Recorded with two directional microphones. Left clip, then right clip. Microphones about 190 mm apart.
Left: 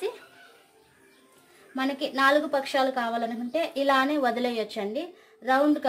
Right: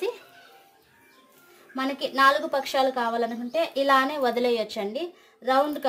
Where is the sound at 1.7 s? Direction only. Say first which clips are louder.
Right 2 dB; 20° right (ahead or behind).